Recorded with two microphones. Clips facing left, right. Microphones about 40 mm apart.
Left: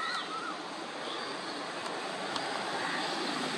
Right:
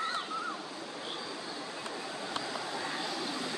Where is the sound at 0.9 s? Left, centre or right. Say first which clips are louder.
Left 3 dB; left.